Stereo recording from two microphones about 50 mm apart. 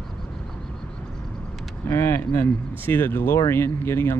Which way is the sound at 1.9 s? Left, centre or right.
Left.